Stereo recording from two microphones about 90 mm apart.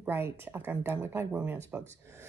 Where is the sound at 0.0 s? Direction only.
25° right (ahead or behind).